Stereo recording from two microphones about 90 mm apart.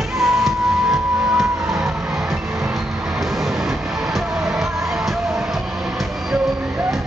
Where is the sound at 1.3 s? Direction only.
5° right (ahead or behind).